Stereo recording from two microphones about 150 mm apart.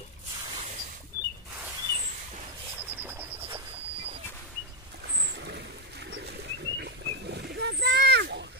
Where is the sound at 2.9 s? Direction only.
10° right (ahead or behind).